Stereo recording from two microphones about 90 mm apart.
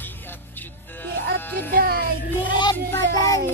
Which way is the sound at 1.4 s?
20° left (ahead or behind).